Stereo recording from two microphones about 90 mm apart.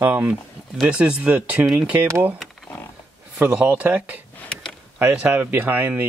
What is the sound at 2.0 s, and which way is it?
Speech, 25° right (ahead or behind).